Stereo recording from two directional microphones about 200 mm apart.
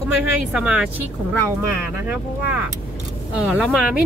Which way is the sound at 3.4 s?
5° right (ahead or behind).